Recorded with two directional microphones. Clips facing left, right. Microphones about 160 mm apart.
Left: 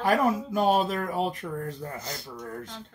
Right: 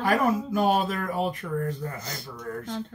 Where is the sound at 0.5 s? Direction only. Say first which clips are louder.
Even; 35° left (ahead or behind).